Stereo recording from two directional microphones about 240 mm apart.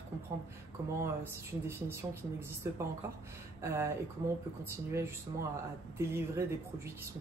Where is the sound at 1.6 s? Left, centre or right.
Centre.